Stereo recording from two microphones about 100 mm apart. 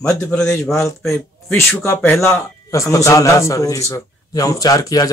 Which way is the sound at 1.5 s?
20° left (ahead or behind).